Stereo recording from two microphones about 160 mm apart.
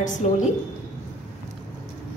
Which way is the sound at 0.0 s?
50° left (ahead or behind).